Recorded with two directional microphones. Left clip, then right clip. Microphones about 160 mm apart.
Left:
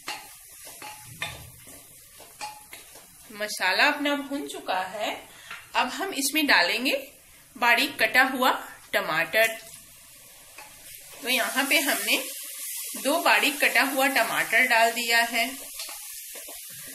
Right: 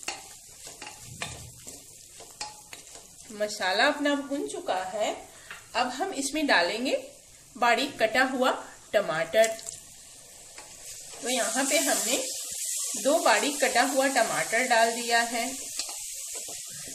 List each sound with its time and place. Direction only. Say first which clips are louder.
3.3 s speech: left 2 dB; 35° right (ahead or behind)
4.6 s a woman's voice: left 1 dB; 45° right (ahead or behind); by 9.5 s 25° right (ahead or behind)
11.2 s speech: left 3 dB; 30° right (ahead or behind)